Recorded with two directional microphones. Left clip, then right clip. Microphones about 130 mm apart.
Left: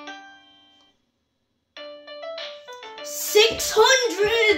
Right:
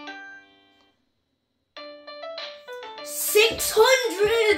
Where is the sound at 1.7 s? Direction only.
25° right (ahead or behind).